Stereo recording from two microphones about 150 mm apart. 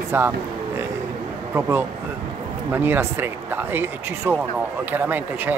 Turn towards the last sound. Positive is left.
turn(degrees=-10)  # may be behind; listen again after turning